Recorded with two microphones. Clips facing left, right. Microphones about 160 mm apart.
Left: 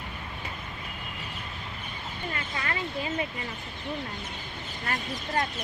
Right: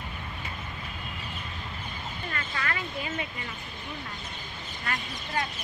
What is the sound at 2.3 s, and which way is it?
Speech, 25° left (ahead or behind).